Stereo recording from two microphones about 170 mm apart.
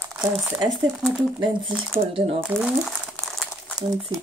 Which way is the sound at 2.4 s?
Centre (ahead or behind).